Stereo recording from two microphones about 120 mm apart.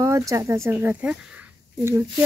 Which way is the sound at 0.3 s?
25° right (ahead or behind).